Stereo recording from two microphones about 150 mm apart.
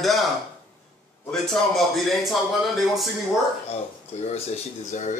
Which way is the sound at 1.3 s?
Centre (ahead or behind).